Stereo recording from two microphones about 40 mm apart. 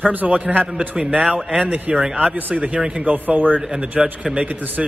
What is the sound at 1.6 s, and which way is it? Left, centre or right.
A man's voice, right.